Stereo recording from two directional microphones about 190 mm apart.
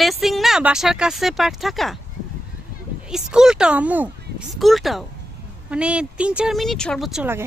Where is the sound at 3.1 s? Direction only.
5° right (ahead or behind).